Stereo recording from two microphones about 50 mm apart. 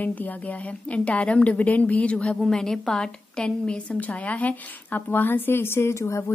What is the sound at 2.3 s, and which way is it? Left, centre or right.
Speech, centre.